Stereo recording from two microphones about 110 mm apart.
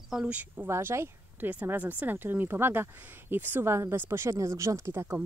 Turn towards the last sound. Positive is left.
turn(degrees=-20)  # may be behind; listen again after turning